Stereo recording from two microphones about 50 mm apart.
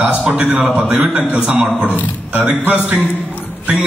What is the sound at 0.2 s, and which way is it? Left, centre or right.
A man's voice, right.